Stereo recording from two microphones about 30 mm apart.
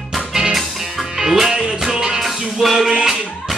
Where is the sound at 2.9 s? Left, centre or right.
Right.